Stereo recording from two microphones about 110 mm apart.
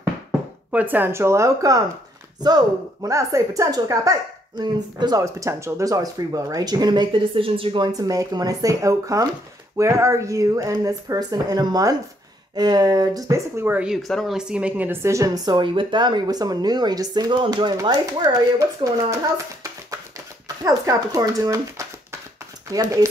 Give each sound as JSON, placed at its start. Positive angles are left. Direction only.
{"t": 0.7, "sound": "speech", "side_deg": -15}
{"t": 13.7, "sound": "speech", "side_deg": -5}
{"t": 15.0, "sound": "speech", "side_deg": -30}